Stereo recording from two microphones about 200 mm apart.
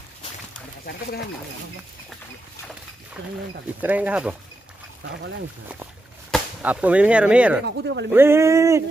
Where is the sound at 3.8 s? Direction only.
10° right (ahead or behind).